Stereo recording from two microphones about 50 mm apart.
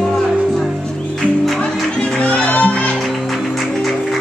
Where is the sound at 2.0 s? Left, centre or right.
Left.